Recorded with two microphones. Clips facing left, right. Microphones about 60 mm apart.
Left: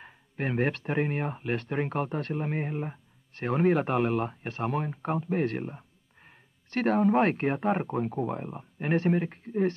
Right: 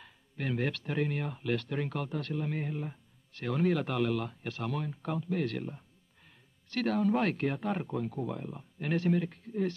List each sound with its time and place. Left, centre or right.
0.0 s speech: left